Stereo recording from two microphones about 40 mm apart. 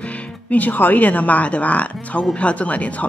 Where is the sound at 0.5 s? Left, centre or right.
Left.